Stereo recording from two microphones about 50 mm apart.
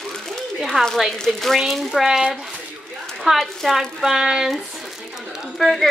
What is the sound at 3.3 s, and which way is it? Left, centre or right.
Speech, centre.